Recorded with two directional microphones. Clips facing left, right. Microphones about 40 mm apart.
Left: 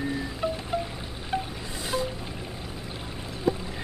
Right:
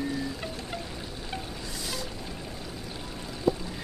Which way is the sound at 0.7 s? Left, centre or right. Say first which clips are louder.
Left 9 dB; centre.